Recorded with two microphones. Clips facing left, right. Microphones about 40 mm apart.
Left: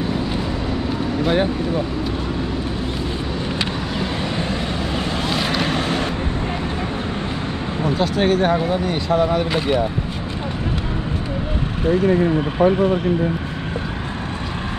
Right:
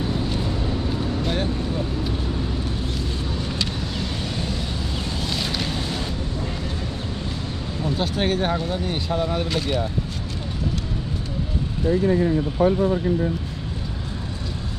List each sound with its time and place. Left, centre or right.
1.2 s speech: left
5.3 s vehicle: left
8.0 s speech: centre
8.5 s speech: left
12.1 s speech: left